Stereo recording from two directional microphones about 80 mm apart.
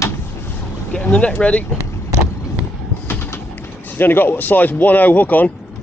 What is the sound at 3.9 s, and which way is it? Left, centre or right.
Speech, left.